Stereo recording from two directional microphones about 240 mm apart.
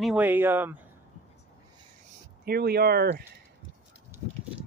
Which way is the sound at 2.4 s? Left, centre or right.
Right.